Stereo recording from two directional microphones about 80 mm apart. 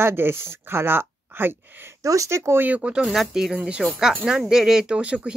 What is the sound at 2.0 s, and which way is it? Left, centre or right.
Speech, right.